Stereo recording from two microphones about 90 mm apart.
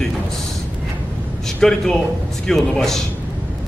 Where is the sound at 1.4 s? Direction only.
5° left (ahead or behind).